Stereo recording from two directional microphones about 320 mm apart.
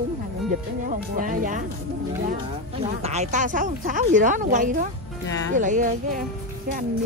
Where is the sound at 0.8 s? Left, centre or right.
Right.